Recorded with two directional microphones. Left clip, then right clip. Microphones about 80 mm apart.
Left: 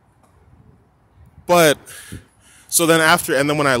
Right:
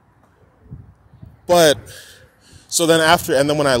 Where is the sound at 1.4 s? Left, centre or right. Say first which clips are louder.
Right 1 dB; left.